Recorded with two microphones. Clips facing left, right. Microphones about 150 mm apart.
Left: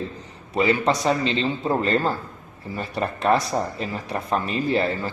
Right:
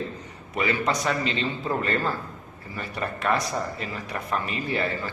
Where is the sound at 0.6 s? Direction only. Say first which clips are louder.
Left 5 dB; 25° left (ahead or behind).